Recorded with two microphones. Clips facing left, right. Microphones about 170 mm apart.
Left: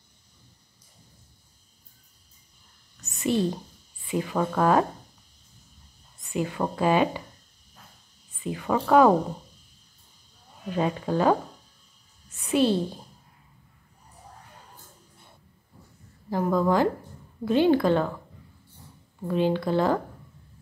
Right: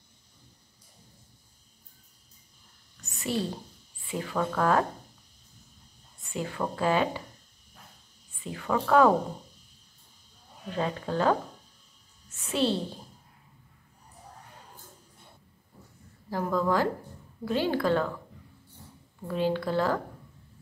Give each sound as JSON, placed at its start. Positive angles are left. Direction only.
{"t": 3.0, "sound": "a sound", "side_deg": 20}
{"t": 4.1, "sound": "speech", "side_deg": 20}
{"t": 6.3, "sound": "speech", "side_deg": 15}
{"t": 8.5, "sound": "speech", "side_deg": 15}
{"t": 10.8, "sound": "speech", "side_deg": 15}
{"t": 12.4, "sound": "a woman's voice", "side_deg": 15}
{"t": 16.3, "sound": "speech", "side_deg": 20}
{"t": 19.2, "sound": "speech", "side_deg": 20}